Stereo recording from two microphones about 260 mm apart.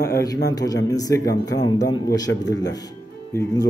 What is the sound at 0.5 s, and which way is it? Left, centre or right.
Speech, centre.